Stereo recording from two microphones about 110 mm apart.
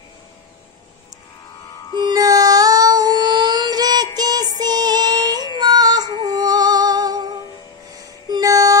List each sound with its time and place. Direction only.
2.0 s music: 35° right (ahead or behind)
4.6 s child singing: 35° right (ahead or behind)
5.6 s music: 40° right (ahead or behind)